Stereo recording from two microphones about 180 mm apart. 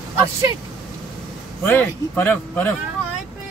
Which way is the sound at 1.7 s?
10° left (ahead or behind).